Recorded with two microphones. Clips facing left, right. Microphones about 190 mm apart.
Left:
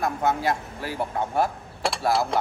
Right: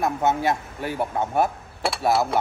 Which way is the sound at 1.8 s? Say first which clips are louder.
Right 1 dB; centre (ahead or behind).